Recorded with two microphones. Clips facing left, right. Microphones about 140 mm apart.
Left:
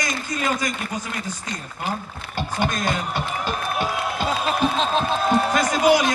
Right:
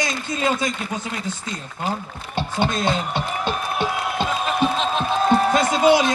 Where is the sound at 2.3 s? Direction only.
25° right (ahead or behind).